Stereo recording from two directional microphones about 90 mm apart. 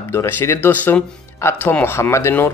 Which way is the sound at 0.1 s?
25° left (ahead or behind).